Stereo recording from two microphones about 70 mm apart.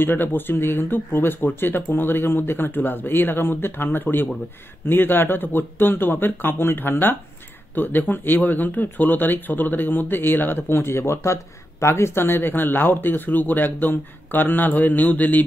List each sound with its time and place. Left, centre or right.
0.0 s speech: left